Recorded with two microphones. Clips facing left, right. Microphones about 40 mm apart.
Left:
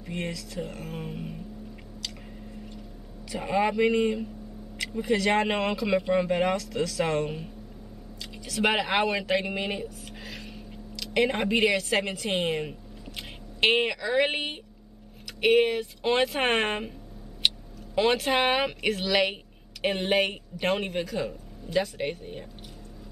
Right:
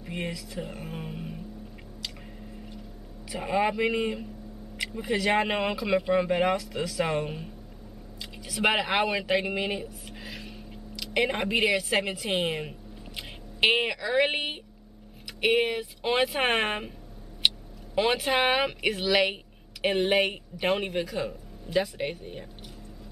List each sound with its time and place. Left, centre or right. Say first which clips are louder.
0.0 s speech: left 1 dB; centre
3.3 s speech: left 1 dB; centre
10.0 s a sound: even; centre
15.4 s speech: left 3 dB; centre
17.4 s tick-tock: right 1 dB; centre
17.9 s speech: left 1 dB; centre